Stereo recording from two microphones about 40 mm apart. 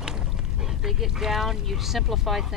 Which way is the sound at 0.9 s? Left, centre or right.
Centre.